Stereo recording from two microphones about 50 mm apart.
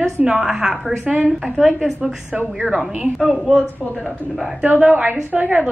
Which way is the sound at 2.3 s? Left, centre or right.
Right.